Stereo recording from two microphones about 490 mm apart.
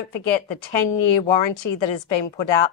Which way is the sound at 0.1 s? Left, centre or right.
Left.